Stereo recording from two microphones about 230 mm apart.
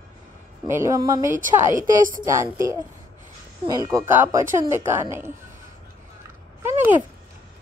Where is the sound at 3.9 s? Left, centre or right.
Centre.